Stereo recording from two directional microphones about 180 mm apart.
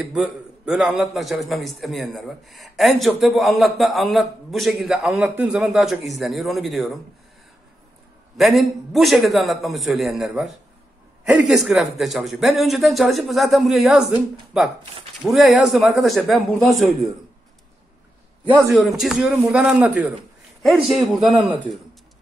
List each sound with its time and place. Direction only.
0.1 s a man's voice: centre (ahead or behind)
8.4 s a man's voice: centre (ahead or behind)
18.4 s a man's voice: 10° right (ahead or behind)
21.3 s a man's voice: 25° right (ahead or behind)